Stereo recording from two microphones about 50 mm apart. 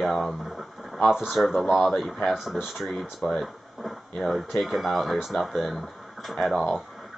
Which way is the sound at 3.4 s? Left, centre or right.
Centre.